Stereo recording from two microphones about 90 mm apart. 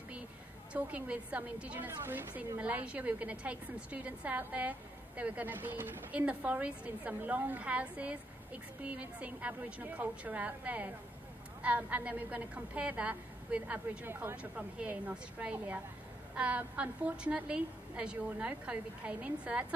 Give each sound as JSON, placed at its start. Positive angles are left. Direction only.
{"t": 0.7, "sound": "a woman's voice", "side_deg": -15}